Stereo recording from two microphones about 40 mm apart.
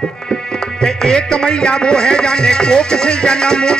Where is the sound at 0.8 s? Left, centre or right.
Centre.